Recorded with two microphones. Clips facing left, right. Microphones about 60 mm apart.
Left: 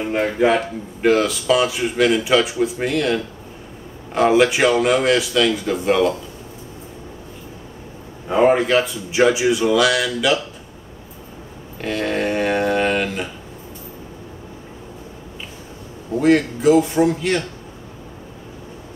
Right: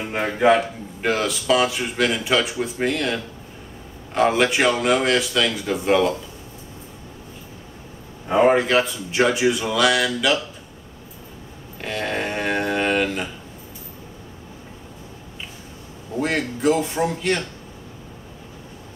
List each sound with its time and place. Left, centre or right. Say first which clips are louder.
0.1 s speech: even; centre
8.4 s speech: left 1 dB; centre
11.8 s a sound: left 4 dB; centre
16.2 s speech: left 7 dB; centre